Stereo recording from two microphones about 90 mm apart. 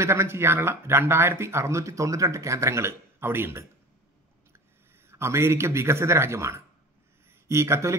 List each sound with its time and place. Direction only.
0.0 s speech: 30° right (ahead or behind)
5.1 s speech: 30° right (ahead or behind)